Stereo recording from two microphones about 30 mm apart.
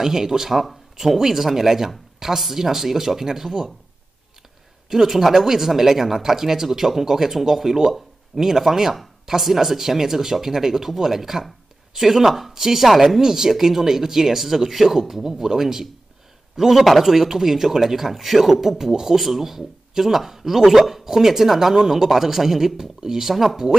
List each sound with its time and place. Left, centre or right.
0.0 s speech: centre
0.6 s speech: centre
4.8 s speech: centre
13.2 s a man's voice: centre